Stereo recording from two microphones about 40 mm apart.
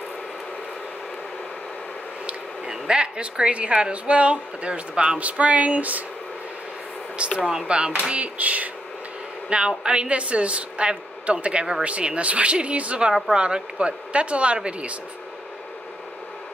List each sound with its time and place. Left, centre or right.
2.7 s a woman's voice: right
7.3 s a woman's voice: right
9.5 s a woman's voice: right
13.1 s a woman's voice: right